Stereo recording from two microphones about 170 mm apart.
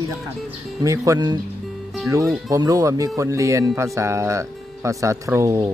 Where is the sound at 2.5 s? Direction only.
20° right (ahead or behind).